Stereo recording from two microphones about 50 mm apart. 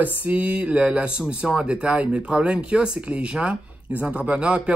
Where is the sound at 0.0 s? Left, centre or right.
Right.